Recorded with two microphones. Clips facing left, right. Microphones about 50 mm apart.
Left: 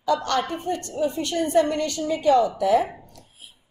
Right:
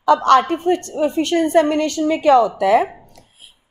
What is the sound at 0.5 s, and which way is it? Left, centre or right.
A woman's voice, right.